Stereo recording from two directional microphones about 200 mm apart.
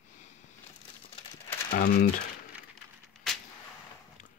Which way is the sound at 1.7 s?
45° left (ahead or behind).